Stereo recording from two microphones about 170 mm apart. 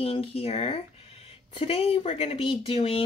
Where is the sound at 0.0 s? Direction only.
35° left (ahead or behind).